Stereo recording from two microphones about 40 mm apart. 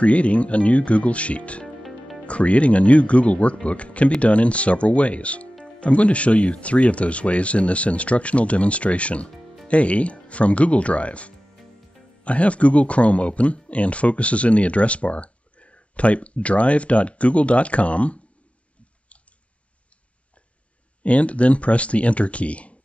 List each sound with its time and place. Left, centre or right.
0.0 s speech: left
1.8 s music: centre
2.2 s speech: left
21.0 s speech: left